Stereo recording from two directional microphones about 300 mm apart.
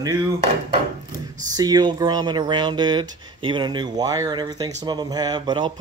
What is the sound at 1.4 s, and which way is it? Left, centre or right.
Speech, centre.